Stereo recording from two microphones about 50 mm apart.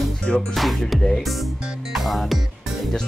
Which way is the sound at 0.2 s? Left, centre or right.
Centre.